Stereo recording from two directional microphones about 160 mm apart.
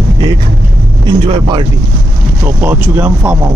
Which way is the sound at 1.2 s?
30° right (ahead or behind).